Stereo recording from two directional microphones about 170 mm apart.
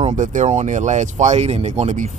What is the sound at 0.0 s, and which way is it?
Speech, 45° right (ahead or behind).